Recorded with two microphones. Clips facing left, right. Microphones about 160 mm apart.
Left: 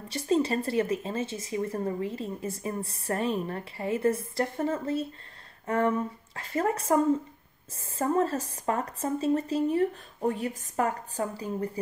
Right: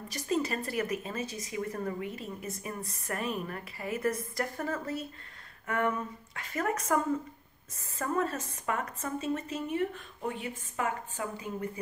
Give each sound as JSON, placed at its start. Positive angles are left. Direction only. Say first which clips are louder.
{"t": 0.1, "sound": "speech", "louder": "left 6 dB", "side_deg": 30}